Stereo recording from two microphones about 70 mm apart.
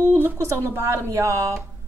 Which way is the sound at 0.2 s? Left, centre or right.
Right.